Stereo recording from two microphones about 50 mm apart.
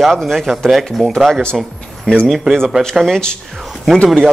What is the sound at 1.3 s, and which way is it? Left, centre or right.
Speech, centre.